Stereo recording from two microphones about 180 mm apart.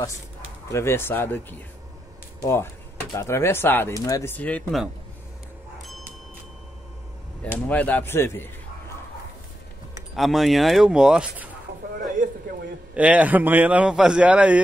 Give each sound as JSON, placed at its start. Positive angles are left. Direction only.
{"t": 0.7, "sound": "speech", "side_deg": 15}
{"t": 7.5, "sound": "speech", "side_deg": 10}
{"t": 10.1, "sound": "speech", "side_deg": 0}
{"t": 12.0, "sound": "a sound", "side_deg": -50}
{"t": 12.9, "sound": "a man's voice", "side_deg": -10}